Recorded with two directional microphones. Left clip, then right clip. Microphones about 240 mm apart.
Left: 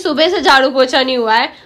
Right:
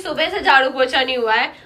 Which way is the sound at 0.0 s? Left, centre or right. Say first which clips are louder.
Left 6 dB; centre.